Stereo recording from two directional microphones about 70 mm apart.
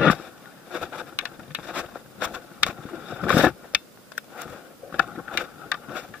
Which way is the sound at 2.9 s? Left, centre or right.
Centre.